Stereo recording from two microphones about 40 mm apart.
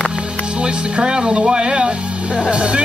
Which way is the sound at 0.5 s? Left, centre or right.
Right.